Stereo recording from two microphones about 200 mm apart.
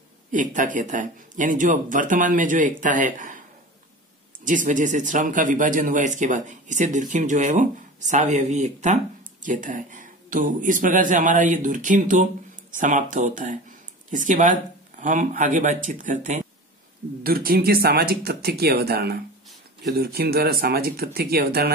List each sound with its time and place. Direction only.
0.3 s speech: 40° right (ahead or behind)
4.5 s speech: 40° right (ahead or behind)